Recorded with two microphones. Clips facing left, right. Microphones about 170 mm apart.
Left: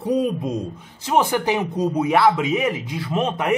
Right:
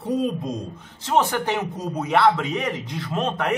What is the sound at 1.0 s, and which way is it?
Speech, 10° left (ahead or behind).